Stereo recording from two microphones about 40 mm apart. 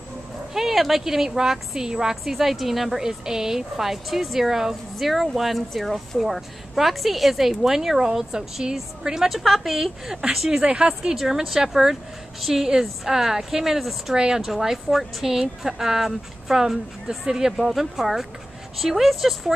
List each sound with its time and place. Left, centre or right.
0.6 s a woman's voice: centre
4.9 s a woman's voice: centre
10.6 s speech: right
11.1 s a woman's voice: centre
14.1 s speech: centre
14.4 s a woman's voice: centre